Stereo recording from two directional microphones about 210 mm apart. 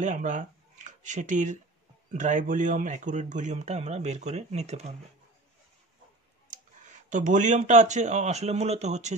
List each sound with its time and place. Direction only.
0.0 s speech: 35° right (ahead or behind)
6.5 s speech: 35° right (ahead or behind)